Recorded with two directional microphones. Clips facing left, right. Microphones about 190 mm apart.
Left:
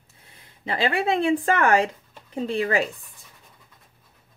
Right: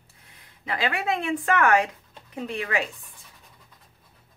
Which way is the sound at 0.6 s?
30° left (ahead or behind).